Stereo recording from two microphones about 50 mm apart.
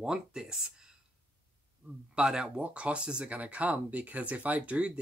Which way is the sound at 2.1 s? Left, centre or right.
Centre.